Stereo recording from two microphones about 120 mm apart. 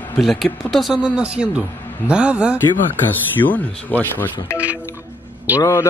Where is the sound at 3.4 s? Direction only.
15° left (ahead or behind).